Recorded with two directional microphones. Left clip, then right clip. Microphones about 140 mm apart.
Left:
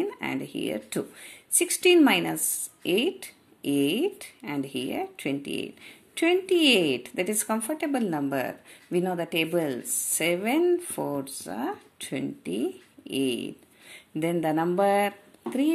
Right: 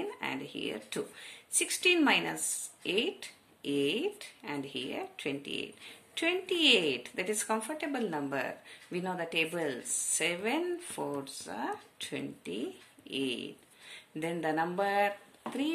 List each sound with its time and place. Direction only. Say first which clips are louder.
0.0 s speech: left 6 dB; 40° left (ahead or behind)